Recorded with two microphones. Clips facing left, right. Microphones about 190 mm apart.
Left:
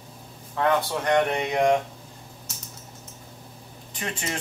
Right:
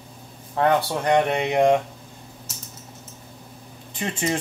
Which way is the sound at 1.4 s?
25° right (ahead or behind).